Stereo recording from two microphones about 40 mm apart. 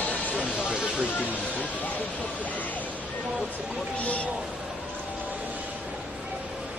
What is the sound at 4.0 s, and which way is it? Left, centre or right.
Speech, left.